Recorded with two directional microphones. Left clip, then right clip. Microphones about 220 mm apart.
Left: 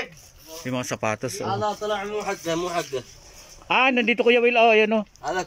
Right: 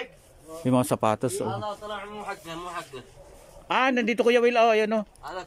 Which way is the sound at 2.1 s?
45° left (ahead or behind).